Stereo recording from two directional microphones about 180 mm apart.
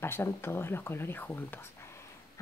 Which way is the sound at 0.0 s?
15° left (ahead or behind).